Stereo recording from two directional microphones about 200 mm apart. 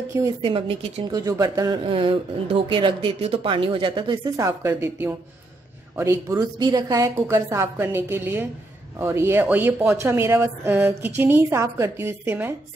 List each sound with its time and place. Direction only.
0.4 s a woman's voice: 25° right (ahead or behind)